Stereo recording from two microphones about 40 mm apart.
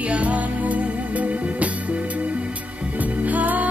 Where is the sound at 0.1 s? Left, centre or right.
Right.